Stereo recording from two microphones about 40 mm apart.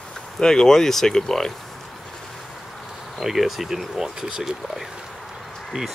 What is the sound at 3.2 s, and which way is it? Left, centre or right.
Speech, centre.